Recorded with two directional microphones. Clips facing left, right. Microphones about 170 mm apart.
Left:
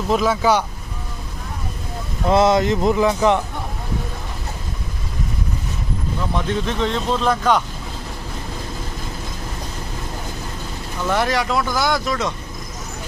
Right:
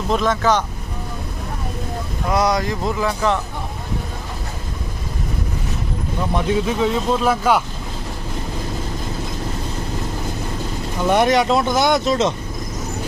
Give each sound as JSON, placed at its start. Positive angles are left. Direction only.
{"t": 0.1, "sound": "speech", "side_deg": 5}
{"t": 2.2, "sound": "speech", "side_deg": 25}
{"t": 6.3, "sound": "speech", "side_deg": -10}
{"t": 11.1, "sound": "speech", "side_deg": -20}